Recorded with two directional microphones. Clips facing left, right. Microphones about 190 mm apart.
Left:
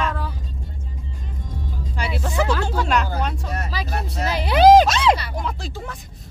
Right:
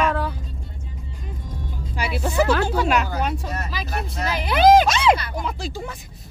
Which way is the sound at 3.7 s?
35° left (ahead or behind).